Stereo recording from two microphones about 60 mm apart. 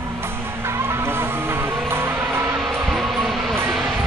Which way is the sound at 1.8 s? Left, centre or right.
Right.